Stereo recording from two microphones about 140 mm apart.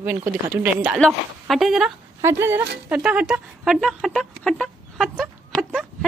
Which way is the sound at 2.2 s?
20° right (ahead or behind).